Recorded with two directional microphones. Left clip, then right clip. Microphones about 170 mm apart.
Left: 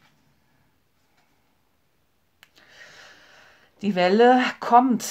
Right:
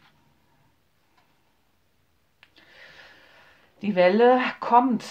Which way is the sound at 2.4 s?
40° left (ahead or behind).